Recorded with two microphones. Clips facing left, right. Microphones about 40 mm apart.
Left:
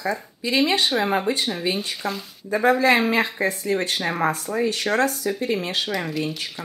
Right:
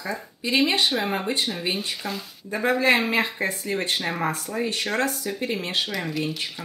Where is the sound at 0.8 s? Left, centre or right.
Centre.